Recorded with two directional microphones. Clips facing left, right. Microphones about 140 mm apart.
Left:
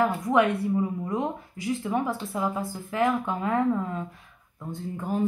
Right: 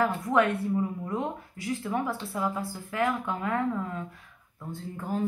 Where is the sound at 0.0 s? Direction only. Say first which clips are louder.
Left 2 dB; 15° left (ahead or behind).